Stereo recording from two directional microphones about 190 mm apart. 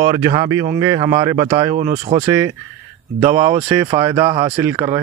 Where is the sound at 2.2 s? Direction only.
15° right (ahead or behind).